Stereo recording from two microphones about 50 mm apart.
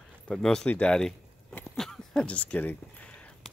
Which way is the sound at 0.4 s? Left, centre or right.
Centre.